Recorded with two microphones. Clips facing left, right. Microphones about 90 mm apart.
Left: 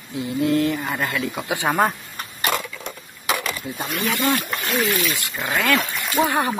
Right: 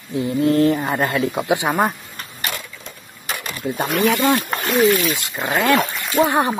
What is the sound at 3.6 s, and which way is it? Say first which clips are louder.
Speech: right 7 dB; 60° right (ahead or behind).